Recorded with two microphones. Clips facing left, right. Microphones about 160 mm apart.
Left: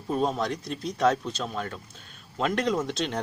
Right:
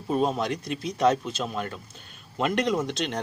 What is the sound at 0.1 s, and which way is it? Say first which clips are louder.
Speech: right 2 dB; 5° right (ahead or behind).